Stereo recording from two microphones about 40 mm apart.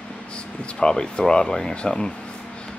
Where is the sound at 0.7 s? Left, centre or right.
Centre.